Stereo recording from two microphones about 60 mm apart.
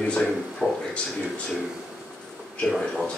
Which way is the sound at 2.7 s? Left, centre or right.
Centre.